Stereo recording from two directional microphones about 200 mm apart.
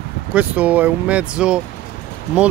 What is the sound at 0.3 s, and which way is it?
Speech, 5° right (ahead or behind).